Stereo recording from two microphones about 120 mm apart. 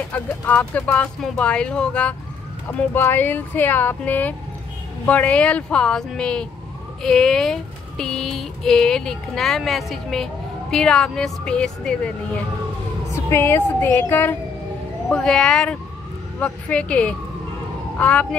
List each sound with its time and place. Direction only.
0.1 s speech: 10° left (ahead or behind)
13.1 s speech: 20° left (ahead or behind)